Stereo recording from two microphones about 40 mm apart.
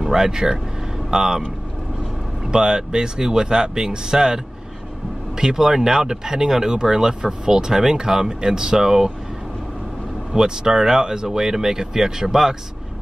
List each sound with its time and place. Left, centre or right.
0.0 s speech: centre
2.4 s speech: centre
10.3 s speech: centre